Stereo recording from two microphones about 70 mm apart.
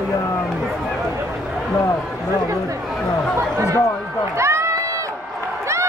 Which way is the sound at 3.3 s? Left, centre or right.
Right.